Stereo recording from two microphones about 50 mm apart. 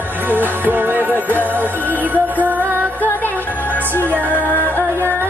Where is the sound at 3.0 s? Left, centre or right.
Left.